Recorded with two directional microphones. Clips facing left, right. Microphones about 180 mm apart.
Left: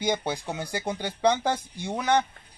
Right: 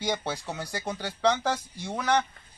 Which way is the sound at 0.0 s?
20° left (ahead or behind).